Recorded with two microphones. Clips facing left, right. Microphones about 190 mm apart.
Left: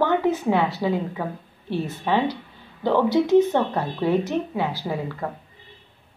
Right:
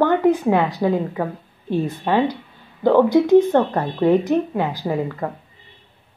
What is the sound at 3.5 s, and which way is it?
Speech, 55° right (ahead or behind).